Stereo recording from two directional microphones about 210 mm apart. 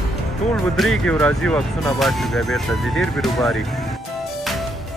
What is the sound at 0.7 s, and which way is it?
Speech, centre (ahead or behind).